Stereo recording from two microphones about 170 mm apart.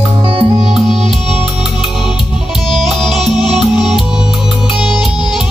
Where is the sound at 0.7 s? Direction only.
Centre (ahead or behind).